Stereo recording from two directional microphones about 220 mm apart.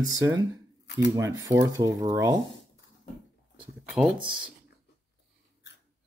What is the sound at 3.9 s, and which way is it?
Speech, centre (ahead or behind).